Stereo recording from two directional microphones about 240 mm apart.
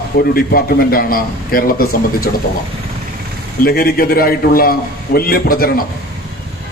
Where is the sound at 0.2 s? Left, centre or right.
Left.